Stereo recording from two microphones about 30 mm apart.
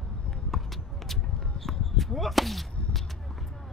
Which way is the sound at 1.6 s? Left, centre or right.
Centre.